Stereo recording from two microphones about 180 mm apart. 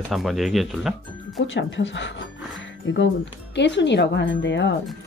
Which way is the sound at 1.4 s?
90° left.